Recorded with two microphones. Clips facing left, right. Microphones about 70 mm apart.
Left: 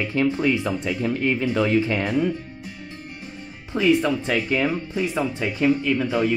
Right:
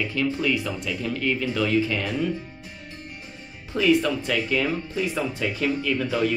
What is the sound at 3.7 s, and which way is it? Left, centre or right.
Speech, left.